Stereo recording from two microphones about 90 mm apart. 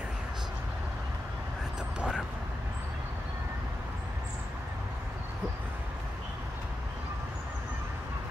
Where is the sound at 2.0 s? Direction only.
10° right (ahead or behind).